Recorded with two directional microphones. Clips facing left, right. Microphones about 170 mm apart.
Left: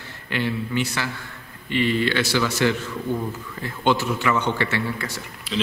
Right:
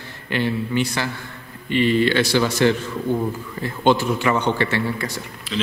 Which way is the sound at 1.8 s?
25° right (ahead or behind).